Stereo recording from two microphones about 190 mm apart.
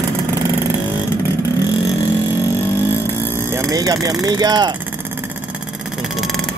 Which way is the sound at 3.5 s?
15° right (ahead or behind).